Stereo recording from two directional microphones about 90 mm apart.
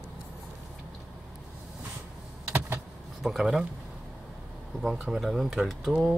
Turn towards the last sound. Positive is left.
turn(degrees=0)  # may be behind; listen again after turning